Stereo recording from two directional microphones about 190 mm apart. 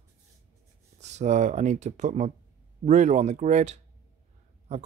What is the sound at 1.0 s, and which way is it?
Speech, 35° right (ahead or behind).